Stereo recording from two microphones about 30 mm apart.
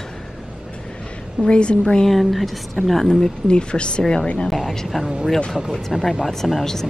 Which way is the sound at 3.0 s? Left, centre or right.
Centre.